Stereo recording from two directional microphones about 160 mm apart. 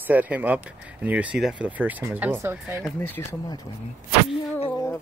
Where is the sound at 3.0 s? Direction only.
15° left (ahead or behind).